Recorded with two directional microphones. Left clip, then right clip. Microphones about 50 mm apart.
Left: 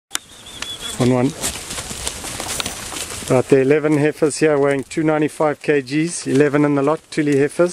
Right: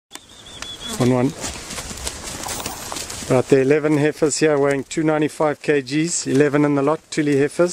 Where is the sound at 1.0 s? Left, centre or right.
Centre.